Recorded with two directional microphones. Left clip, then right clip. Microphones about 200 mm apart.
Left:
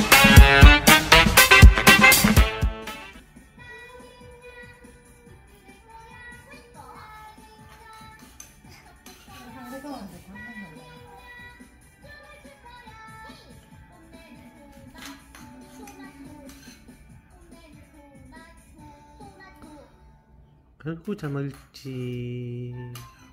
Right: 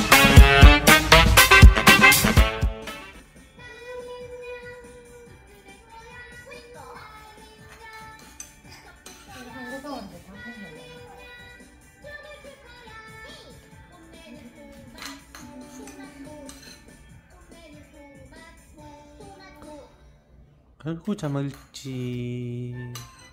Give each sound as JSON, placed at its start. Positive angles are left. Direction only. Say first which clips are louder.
{"t": 0.0, "sound": "music", "louder": "left 1 dB", "side_deg": 0}
{"t": 20.8, "sound": "speech", "louder": "right 2 dB", "side_deg": -20}